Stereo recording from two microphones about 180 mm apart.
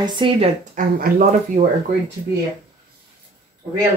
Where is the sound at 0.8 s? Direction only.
50° right (ahead or behind).